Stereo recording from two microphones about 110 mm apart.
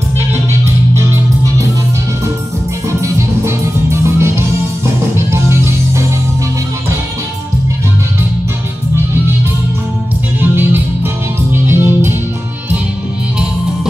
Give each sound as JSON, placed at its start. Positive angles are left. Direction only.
{"t": 3.0, "sound": "music", "side_deg": -25}
{"t": 10.4, "sound": "music", "side_deg": -20}